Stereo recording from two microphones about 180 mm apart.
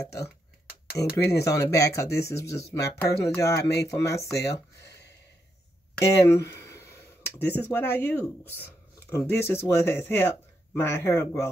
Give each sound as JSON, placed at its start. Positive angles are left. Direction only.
{"t": 1.1, "sound": "speech", "side_deg": 15}
{"t": 4.4, "sound": "a sound", "side_deg": 70}
{"t": 5.9, "sound": "speech", "side_deg": 15}